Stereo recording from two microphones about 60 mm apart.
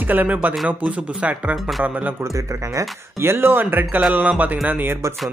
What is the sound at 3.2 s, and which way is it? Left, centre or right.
Speech, right.